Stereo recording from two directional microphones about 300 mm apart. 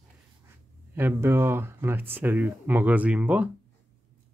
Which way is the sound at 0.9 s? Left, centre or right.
Centre.